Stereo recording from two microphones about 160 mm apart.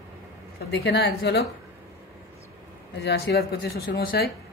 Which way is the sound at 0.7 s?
90° left.